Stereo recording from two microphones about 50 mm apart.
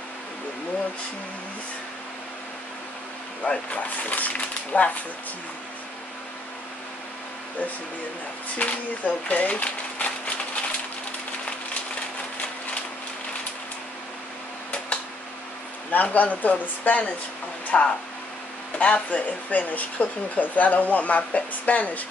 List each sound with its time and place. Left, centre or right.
3.7 s speech: left
8.5 s speech: left
15.9 s speech: left